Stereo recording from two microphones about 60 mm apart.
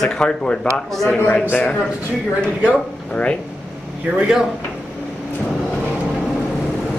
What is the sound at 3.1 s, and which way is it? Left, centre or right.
Speech, left.